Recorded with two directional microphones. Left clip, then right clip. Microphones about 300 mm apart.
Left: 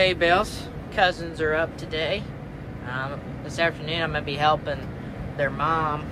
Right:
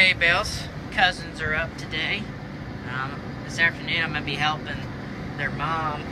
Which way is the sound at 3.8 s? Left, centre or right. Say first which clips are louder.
Right 1 dB; centre.